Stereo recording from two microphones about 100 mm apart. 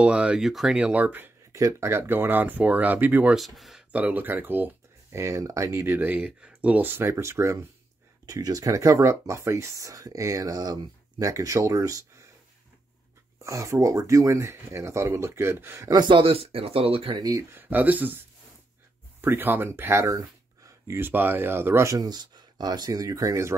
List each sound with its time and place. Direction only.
0.0 s speech: 10° right (ahead or behind)
1.5 s speech: 30° right (ahead or behind)
3.3 s speech: centre (ahead or behind)
3.9 s speech: 15° right (ahead or behind)
5.2 s speech: 35° right (ahead or behind)
8.3 s speech: 40° right (ahead or behind)
13.4 s speech: 30° right (ahead or behind)
15.9 s speech: 45° right (ahead or behind)
16.2 s speech: 75° right (ahead or behind)
17.2 s speech: 35° right (ahead or behind)
17.5 s speech: 20° right (ahead or behind)
19.2 s speech: 20° right (ahead or behind)